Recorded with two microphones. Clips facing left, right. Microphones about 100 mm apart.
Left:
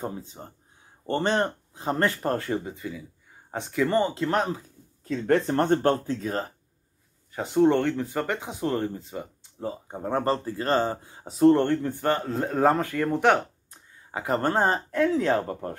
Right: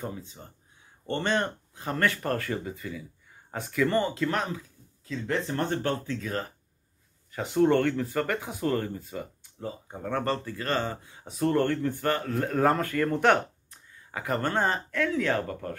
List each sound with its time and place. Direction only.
0.0 s speech: 35° left (ahead or behind)
5.1 s speech: 50° left (ahead or behind)
7.3 s speech: 15° left (ahead or behind)
9.7 s speech: 30° left (ahead or behind); by 13.4 s 15° left (ahead or behind)
13.7 s a sound: 25° left (ahead or behind)
14.4 s speech: 35° left (ahead or behind)